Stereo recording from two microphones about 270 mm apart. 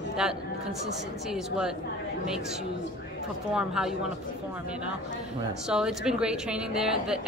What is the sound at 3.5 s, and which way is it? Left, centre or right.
Speech, centre.